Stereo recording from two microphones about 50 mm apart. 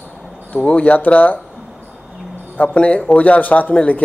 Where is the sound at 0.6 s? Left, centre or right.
Left.